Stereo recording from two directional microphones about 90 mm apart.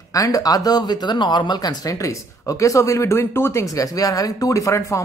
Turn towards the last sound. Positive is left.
turn(degrees=35)  # may be behind; listen again after turning